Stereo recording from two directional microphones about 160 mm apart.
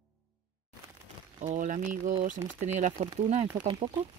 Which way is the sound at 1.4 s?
50° right (ahead or behind).